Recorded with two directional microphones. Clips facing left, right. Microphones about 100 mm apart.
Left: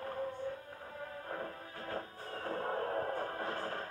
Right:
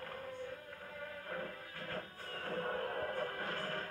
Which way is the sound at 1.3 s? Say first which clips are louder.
Left 1 dB; 30° left (ahead or behind).